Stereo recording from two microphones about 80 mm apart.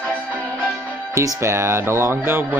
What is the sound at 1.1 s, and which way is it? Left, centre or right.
Speech, right.